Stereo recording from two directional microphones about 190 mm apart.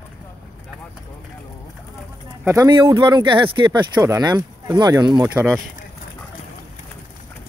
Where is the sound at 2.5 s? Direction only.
15° right (ahead or behind).